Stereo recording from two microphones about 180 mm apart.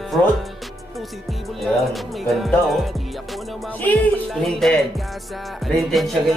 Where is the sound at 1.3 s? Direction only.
Centre (ahead or behind).